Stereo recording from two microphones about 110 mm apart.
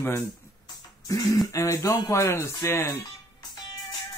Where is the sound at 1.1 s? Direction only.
40° left (ahead or behind).